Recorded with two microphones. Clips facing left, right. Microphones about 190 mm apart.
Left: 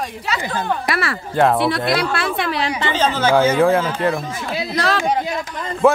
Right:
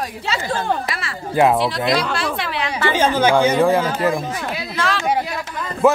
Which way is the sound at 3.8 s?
10° right (ahead or behind).